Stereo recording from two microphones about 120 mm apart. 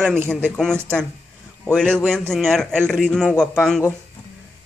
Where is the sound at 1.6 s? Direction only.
5° left (ahead or behind).